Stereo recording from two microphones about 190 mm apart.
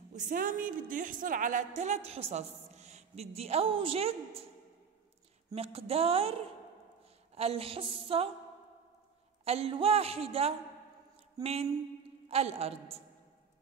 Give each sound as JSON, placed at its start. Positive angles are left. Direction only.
{"t": 0.1, "sound": "a woman's voice", "side_deg": -40}
{"t": 5.5, "sound": "a woman's voice", "side_deg": -30}
{"t": 9.4, "sound": "a woman's voice", "side_deg": -30}